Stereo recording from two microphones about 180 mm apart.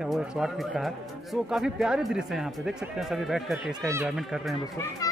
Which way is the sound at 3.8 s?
15° right (ahead or behind).